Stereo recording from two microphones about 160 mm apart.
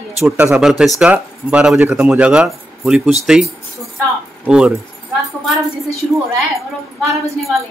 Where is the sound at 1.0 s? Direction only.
5° right (ahead or behind).